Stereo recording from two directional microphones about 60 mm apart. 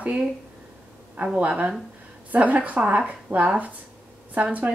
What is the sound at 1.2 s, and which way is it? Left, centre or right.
Speech, centre.